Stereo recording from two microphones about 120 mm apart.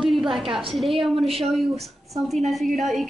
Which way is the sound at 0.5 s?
45° right (ahead or behind).